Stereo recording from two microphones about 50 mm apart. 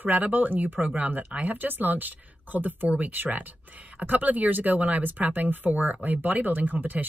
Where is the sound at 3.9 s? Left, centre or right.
Right.